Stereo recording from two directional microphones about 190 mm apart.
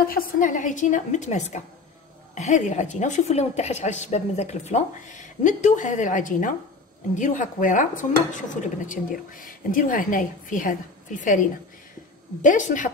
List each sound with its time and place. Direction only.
0.1 s a woman's voice: 50° left (ahead or behind)
7.2 s dishes: 40° left (ahead or behind)
12.4 s a woman's voice: 40° left (ahead or behind)